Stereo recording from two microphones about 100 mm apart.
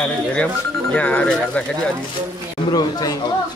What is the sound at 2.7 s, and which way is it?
Speech, 40° left (ahead or behind).